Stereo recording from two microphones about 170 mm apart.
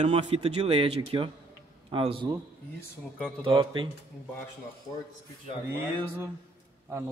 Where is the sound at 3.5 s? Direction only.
30° right (ahead or behind).